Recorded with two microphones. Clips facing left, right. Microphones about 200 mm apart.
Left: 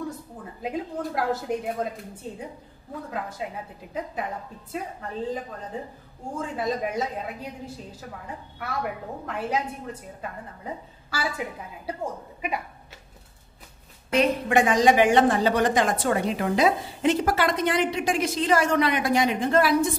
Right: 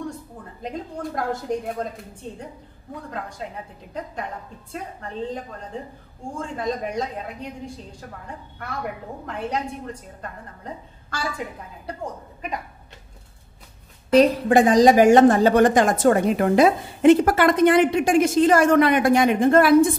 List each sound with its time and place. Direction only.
0.6 s a woman's voice: 5° left (ahead or behind)
3.1 s a woman's voice: 5° left (ahead or behind)
5.7 s a woman's voice: 5° left (ahead or behind)
8.6 s a woman's voice: 5° left (ahead or behind)
14.1 s a woman's voice: 35° right (ahead or behind); by 19.9 s 50° right (ahead or behind)